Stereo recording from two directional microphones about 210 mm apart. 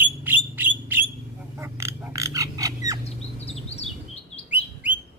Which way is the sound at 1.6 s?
10° right (ahead or behind).